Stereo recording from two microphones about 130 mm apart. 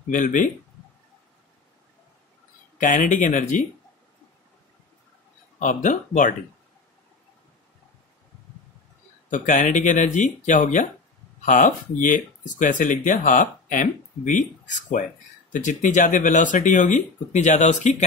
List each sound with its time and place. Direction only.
0.1 s speech: 80° left
2.8 s speech: 80° left
5.6 s speech: 80° left
9.3 s speech: 80° left